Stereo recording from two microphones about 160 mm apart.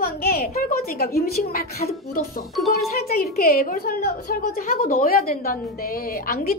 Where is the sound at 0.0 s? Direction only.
70° left (ahead or behind).